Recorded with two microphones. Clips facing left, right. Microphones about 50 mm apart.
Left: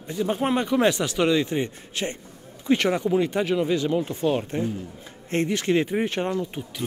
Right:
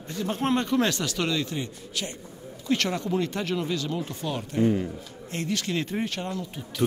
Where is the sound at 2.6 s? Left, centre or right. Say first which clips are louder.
Left 5 dB; left.